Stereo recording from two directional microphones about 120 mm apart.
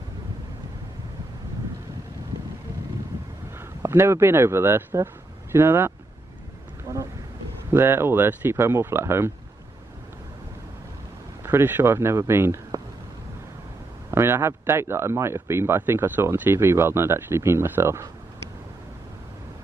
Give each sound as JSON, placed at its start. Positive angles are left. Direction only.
{"t": 3.5, "sound": "speech", "side_deg": -20}
{"t": 6.9, "sound": "a sound", "side_deg": -20}
{"t": 7.7, "sound": "speech", "side_deg": -20}
{"t": 11.4, "sound": "speech", "side_deg": -15}
{"t": 14.1, "sound": "speech", "side_deg": -20}